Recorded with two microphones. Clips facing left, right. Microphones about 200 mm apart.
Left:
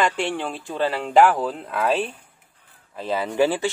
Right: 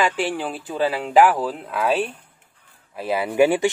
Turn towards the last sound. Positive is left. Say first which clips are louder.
# right 3 dB
turn(degrees=-15)  # may be behind; listen again after turning